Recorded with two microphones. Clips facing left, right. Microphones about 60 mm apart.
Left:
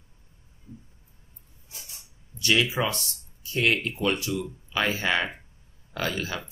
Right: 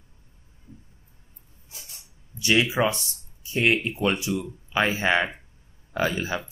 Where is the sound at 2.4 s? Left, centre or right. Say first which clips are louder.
Right 3 dB; right.